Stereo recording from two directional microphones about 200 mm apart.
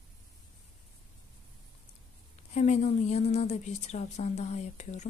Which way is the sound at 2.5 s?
35° left (ahead or behind).